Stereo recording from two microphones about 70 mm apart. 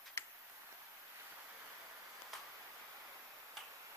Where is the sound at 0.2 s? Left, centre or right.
Left.